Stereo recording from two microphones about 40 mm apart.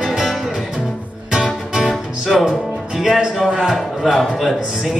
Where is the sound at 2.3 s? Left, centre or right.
Centre.